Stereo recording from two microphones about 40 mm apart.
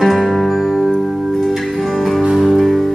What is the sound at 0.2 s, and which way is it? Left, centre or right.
Music, centre.